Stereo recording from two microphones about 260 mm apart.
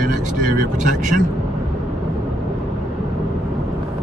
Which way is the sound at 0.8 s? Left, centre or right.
Right.